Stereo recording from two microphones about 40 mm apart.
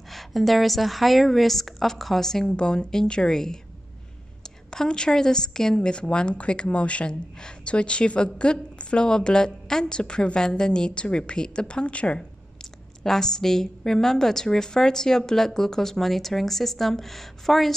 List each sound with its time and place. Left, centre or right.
0.1 s a woman's voice: centre
2.4 s a woman's voice: left
4.6 s a woman's voice: centre
13.0 s a woman's voice: centre